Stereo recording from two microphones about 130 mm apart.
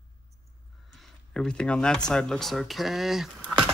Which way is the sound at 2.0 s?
5° left (ahead or behind).